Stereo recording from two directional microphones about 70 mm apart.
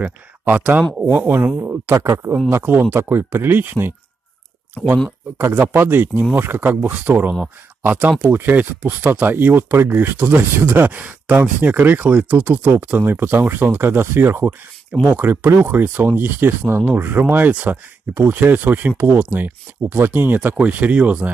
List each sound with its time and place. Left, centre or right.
0.0 s speech: right
2.5 s speech: right
4.8 s speech: left
5.4 s speech: right; by 21.3 s centre